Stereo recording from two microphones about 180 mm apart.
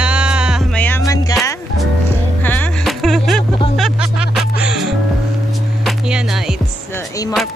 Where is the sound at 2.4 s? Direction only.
10° left (ahead or behind).